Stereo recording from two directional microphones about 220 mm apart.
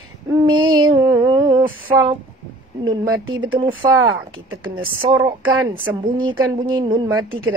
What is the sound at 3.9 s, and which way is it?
Speech, 65° right (ahead or behind).